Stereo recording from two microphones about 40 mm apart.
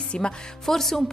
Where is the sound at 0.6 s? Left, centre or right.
Centre.